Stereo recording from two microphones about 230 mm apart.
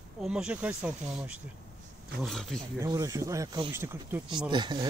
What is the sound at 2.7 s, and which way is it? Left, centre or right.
Speech, centre.